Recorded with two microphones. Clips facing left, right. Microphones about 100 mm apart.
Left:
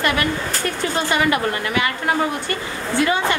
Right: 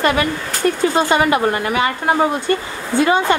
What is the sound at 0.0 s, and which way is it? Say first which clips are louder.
A woman's voice: right 3 dB; 25° right (ahead or behind).